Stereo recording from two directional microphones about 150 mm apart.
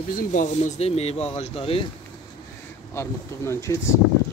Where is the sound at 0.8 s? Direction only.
45° left (ahead or behind).